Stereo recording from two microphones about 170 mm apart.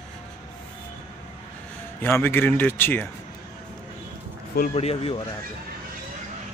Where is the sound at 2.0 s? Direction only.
10° left (ahead or behind).